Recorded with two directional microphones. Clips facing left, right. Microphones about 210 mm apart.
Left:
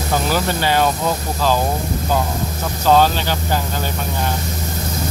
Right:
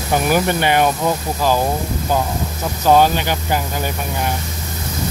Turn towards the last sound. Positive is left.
turn(degrees=-15)  # may be behind; listen again after turning